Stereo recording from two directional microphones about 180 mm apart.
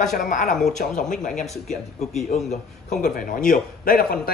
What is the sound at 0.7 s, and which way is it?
Speech, 45° left (ahead or behind).